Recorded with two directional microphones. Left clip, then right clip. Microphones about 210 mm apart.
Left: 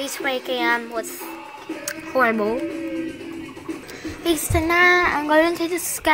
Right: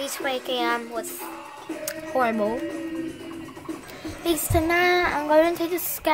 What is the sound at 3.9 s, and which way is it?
A woman's voice, 10° right (ahead or behind).